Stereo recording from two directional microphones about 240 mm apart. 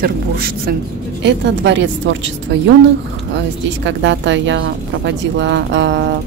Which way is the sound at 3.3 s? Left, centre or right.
Right.